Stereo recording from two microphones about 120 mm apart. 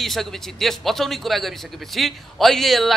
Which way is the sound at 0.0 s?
Centre (ahead or behind).